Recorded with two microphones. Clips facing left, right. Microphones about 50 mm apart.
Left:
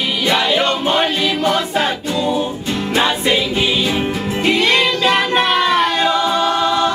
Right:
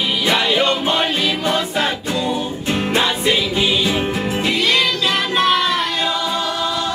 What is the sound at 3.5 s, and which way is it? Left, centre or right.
Music, centre.